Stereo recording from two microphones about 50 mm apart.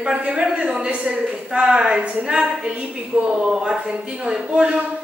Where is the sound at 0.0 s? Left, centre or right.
Centre.